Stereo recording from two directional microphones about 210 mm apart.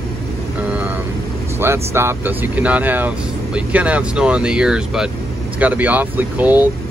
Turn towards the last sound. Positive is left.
turn(degrees=-10)  # may be behind; listen again after turning